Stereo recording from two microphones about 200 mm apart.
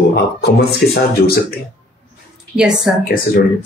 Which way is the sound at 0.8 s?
50° left (ahead or behind).